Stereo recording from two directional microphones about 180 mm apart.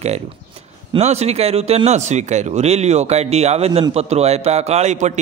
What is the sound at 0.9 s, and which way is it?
Speech, 35° right (ahead or behind).